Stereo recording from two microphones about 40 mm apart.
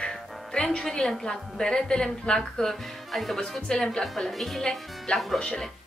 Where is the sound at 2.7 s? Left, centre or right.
Centre.